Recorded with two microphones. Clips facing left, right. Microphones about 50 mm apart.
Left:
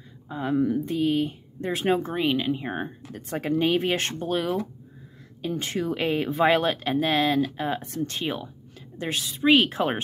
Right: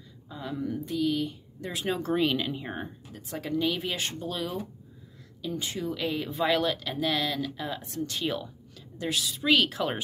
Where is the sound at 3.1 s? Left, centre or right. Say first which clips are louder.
Left 5 dB; left.